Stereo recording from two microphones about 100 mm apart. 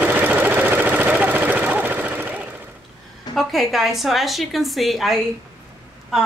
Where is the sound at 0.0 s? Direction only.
15° right (ahead or behind).